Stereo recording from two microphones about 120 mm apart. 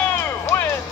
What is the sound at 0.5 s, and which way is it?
Music, 25° left (ahead or behind).